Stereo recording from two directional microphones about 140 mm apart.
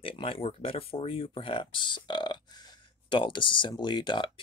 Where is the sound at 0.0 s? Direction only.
40° left (ahead or behind).